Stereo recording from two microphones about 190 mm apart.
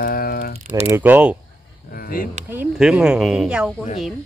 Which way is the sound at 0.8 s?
10° right (ahead or behind).